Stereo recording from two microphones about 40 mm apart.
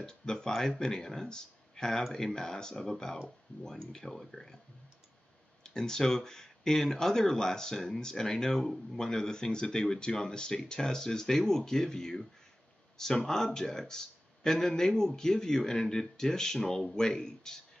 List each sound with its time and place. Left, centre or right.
0.0 s speech: centre
1.9 s speech: centre
2.2 s speech: centre
5.6 s speech: centre